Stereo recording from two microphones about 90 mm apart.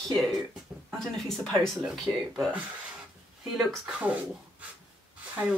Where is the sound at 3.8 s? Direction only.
15° right (ahead or behind).